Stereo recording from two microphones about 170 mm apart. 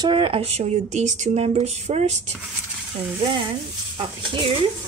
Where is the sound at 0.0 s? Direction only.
30° right (ahead or behind).